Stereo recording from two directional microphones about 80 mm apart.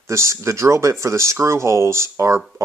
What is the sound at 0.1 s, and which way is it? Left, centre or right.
Speech, right.